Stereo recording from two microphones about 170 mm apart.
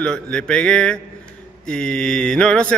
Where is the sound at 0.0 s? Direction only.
5° left (ahead or behind).